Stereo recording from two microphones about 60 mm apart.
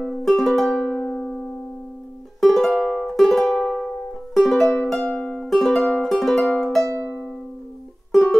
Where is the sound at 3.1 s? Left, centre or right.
Centre.